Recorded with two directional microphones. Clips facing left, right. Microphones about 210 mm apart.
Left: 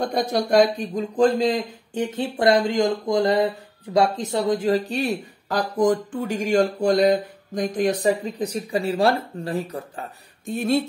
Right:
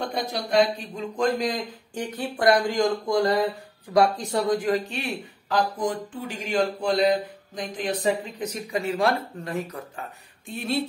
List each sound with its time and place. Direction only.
0.0 s speech: 45° left (ahead or behind)
1.1 s speech: 30° left (ahead or behind); by 10.8 s 45° left (ahead or behind)